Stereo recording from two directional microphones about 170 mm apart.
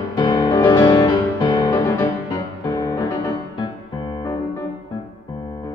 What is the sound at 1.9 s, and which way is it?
Music, 15° left (ahead or behind).